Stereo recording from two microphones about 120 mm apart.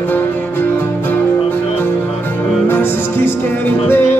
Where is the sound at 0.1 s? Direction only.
15° left (ahead or behind).